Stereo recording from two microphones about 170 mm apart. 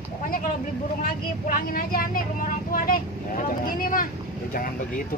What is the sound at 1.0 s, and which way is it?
Speech, 55° left (ahead or behind).